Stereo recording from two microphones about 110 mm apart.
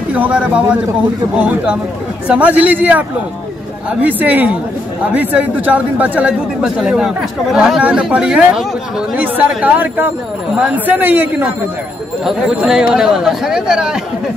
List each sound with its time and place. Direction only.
0.1 s a man's voice: 10° right (ahead or behind)
2.2 s a man's voice: 10° right (ahead or behind)
12.3 s speech: 5° right (ahead or behind)